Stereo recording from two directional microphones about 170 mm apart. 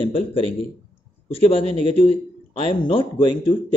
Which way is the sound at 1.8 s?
40° right (ahead or behind).